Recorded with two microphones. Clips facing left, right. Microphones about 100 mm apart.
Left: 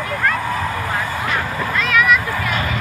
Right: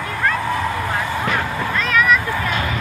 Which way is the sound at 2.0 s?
5° left (ahead or behind).